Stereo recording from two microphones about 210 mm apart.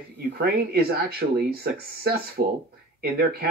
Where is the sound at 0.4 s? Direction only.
50° right (ahead or behind).